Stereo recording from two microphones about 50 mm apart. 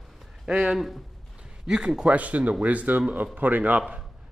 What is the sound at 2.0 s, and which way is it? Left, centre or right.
A man's voice, right.